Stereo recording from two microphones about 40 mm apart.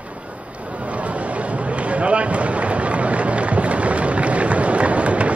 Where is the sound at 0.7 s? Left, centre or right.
Right.